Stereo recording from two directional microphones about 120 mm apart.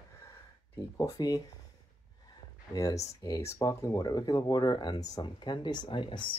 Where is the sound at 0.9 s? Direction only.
30° left (ahead or behind).